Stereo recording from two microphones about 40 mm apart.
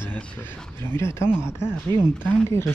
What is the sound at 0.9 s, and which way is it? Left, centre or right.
Speech, left.